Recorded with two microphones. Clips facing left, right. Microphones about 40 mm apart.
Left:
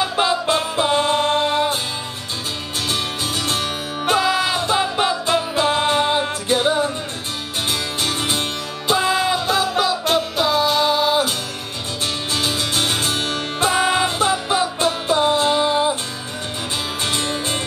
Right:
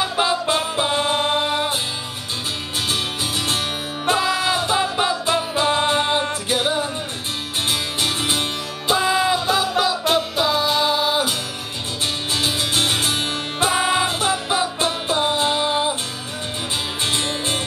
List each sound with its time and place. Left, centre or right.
0.0 s music: centre
4.0 s music: centre
8.0 s music: centre
12.4 s music: centre
17.0 s music: centre